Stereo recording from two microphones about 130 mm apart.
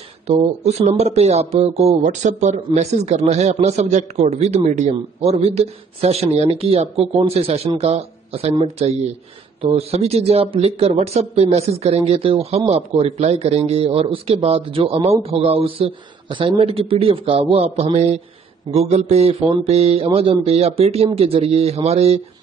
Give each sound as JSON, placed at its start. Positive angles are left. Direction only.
{"t": 0.3, "sound": "speech", "side_deg": -60}